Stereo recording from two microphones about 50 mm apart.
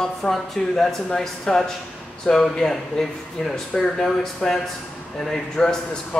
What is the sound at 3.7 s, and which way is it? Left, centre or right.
Speech, left.